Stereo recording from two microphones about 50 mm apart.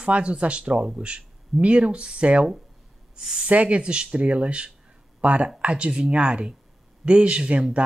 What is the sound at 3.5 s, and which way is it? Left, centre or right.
Speech, right.